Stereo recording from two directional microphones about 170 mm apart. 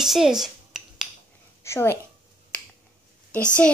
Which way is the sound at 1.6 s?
15° left (ahead or behind).